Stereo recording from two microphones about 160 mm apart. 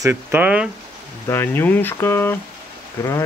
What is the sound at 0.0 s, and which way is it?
Speech, 15° right (ahead or behind).